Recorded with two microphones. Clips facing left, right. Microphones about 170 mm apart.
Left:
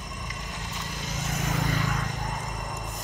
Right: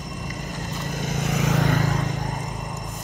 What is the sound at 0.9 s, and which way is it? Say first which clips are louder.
Vehicle: right 8 dB; 55° right (ahead or behind).